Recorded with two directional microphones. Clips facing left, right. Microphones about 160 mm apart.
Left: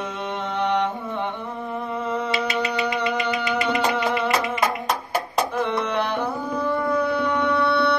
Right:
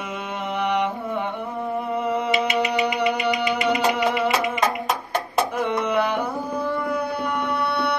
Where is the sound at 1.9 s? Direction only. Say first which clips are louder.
Right 2 dB; 10° right (ahead or behind).